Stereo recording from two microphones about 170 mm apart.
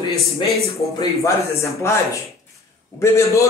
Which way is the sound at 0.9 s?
15° left (ahead or behind).